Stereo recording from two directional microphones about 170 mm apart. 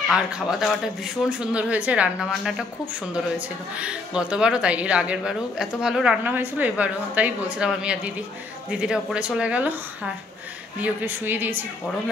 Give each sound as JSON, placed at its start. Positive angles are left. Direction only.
{"t": 0.1, "sound": "a man's voice", "side_deg": 0}